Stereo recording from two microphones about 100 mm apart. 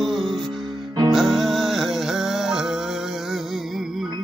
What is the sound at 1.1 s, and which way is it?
Music, centre (ahead or behind).